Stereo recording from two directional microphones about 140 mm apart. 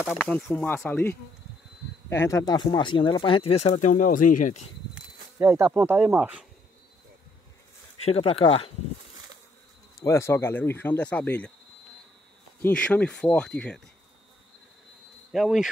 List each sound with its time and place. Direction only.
0.1 s speech: centre (ahead or behind); by 4.6 s 70° left (ahead or behind)
5.4 s speech: 20° right (ahead or behind)
8.0 s speech: 45° left (ahead or behind)
10.0 s speech: 20° left (ahead or behind)
12.6 s speech: 10° left (ahead or behind)
15.3 s speech: centre (ahead or behind)